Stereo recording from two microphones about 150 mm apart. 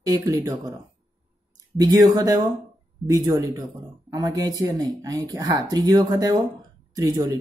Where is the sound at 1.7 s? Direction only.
25° right (ahead or behind).